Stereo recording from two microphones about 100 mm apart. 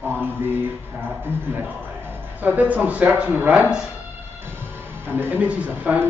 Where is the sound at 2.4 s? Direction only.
15° right (ahead or behind).